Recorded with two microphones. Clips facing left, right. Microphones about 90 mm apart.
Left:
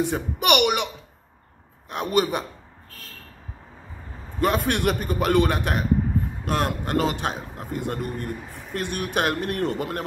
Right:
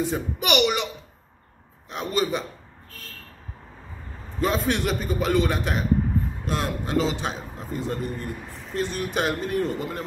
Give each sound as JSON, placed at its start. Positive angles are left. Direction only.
{"t": 0.0, "sound": "a man's voice", "side_deg": 60}
{"t": 1.9, "sound": "a man's voice", "side_deg": 55}
{"t": 4.4, "sound": "a man's voice", "side_deg": 60}
{"t": 8.5, "sound": "speech", "side_deg": 10}
{"t": 8.7, "sound": "a man's voice", "side_deg": 60}